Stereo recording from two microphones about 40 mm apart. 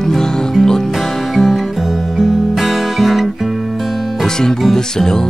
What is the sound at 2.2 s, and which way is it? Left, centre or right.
Guitar, centre.